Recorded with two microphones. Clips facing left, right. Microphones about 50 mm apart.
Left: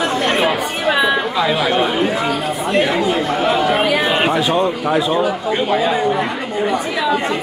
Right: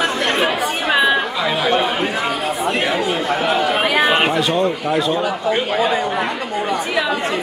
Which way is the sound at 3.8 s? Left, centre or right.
Right.